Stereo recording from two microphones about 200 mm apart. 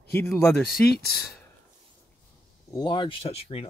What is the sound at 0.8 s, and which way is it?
Speech, 50° left (ahead or behind).